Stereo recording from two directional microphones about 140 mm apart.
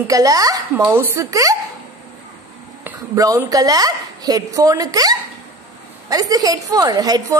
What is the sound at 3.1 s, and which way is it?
A woman's voice, 25° right (ahead or behind).